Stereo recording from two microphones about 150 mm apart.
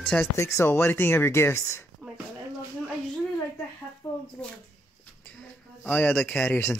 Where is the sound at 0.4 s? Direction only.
20° left (ahead or behind).